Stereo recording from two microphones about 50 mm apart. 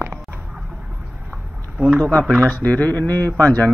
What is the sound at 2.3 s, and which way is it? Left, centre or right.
Speech, left.